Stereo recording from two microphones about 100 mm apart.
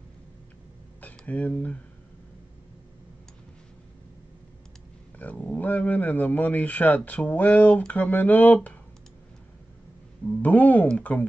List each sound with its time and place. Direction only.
1.0 s speech: 15° left (ahead or behind)
5.2 s speech: 15° left (ahead or behind)
10.4 s speech: 15° left (ahead or behind)